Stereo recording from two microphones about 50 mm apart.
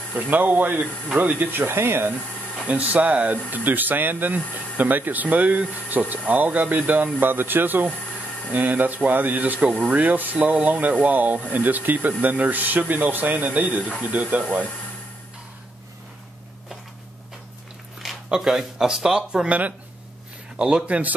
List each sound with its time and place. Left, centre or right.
0.3 s speech: right
2.6 s speech: right
9.7 s speech: centre
9.9 s speech: right
18.0 s speech: centre; by 21.1 s right